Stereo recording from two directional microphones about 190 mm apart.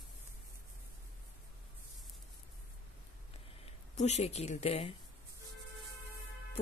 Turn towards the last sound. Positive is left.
turn(degrees=30)  # may be behind; listen again after turning